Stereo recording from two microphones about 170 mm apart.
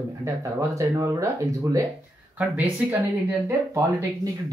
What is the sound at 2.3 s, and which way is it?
Speech, 10° right (ahead or behind).